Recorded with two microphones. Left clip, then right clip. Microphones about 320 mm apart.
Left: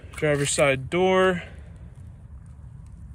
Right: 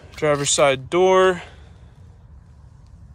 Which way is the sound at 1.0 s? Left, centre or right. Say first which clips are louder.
Right 5 dB; right.